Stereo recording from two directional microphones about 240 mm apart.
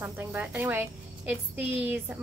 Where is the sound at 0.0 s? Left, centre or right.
Centre.